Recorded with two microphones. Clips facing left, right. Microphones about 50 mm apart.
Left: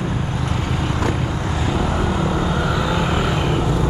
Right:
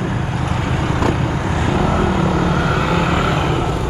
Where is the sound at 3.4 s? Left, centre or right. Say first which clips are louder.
Right 1 dB; right.